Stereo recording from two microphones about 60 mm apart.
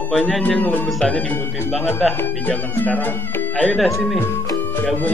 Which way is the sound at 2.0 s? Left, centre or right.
Centre.